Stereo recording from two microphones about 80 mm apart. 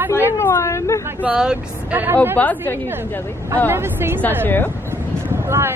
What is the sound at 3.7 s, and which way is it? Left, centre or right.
Speech, right.